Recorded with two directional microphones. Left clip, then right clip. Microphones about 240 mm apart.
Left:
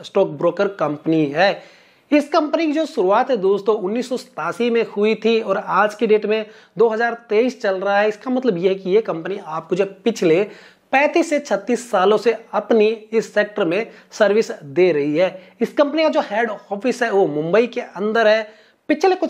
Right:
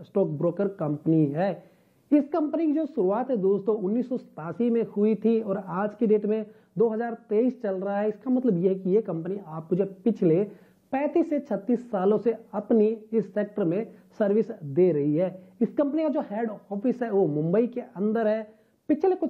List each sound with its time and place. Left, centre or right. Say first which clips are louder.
0.0 s a woman's voice: left 8 dB; centre
16.5 s speech: left 9 dB; left
16.8 s speech: left 8 dB; centre